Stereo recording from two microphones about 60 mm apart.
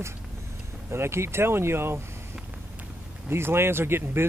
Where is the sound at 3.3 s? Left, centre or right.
Right.